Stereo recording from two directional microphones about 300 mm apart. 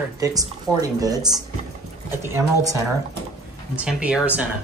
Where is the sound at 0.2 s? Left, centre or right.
Centre.